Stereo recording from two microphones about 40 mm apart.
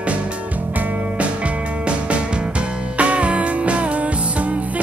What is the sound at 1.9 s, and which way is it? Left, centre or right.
Music, right.